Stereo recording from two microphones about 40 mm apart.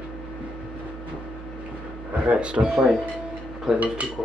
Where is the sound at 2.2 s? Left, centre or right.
Right.